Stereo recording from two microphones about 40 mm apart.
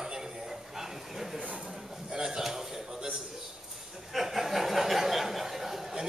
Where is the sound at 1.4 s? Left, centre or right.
Right.